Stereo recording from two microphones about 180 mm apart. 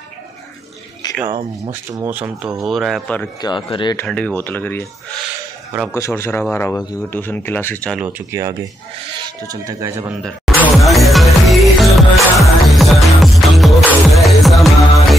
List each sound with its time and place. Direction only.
1.0 s a sound: 25° left (ahead or behind)
1.7 s speech: 10° right (ahead or behind)
3.3 s speech: 25° left (ahead or behind)
3.9 s speech: 10° left (ahead or behind)
8.3 s speech: 20° right (ahead or behind)
10.2 s music: centre (ahead or behind)